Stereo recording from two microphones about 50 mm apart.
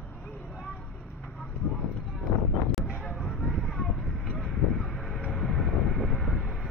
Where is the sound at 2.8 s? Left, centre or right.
Centre.